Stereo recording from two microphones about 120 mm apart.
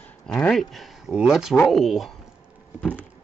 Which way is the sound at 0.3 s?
5° left (ahead or behind).